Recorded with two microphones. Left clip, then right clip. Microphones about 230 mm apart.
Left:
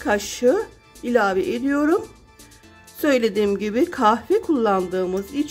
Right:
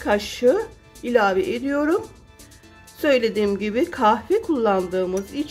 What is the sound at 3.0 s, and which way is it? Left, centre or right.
A woman's voice, centre.